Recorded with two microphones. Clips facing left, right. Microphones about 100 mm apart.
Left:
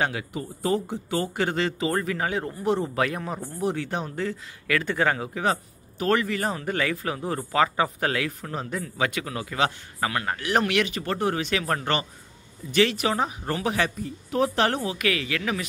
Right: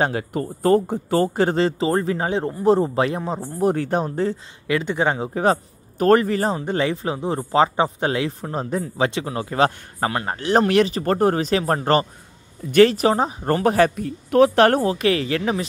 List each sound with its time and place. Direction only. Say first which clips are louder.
0.0 s speech: right 6 dB; 40° right (ahead or behind)
3.6 s speech: right 8 dB; 45° right (ahead or behind)
4.6 s speech: right 3 dB; 20° right (ahead or behind)
5.3 s speech: right 6 dB; 35° right (ahead or behind)
13.9 s speech: right 9 dB; 70° right (ahead or behind)
14.8 s speech: right 7 dB; 35° right (ahead or behind)